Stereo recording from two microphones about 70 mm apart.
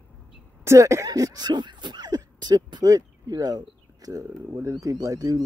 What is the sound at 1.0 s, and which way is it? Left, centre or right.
Speech, right.